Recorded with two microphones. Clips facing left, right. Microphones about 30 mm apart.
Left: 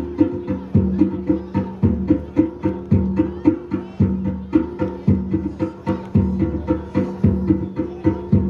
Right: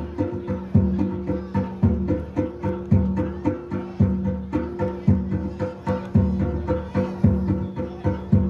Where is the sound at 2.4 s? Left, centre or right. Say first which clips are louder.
Left 7 dB; left.